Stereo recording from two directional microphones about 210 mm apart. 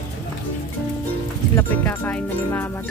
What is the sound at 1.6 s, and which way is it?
Speech, 10° left (ahead or behind).